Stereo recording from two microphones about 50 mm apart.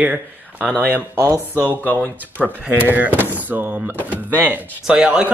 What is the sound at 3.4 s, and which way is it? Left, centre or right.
Speech, right.